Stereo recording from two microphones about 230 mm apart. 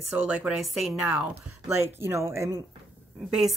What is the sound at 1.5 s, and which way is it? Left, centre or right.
Speech, left.